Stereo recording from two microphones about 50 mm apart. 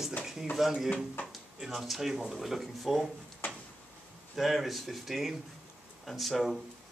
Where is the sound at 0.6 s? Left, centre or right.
Centre.